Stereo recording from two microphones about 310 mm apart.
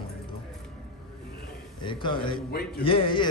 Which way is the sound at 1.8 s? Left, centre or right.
Centre.